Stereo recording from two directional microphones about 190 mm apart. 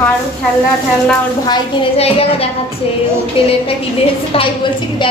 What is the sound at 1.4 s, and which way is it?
A woman's voice, 30° left (ahead or behind).